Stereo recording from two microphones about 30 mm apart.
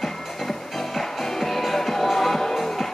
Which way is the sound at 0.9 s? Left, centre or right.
Centre.